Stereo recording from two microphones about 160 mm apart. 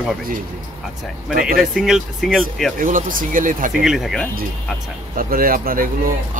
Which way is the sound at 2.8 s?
60° right (ahead or behind).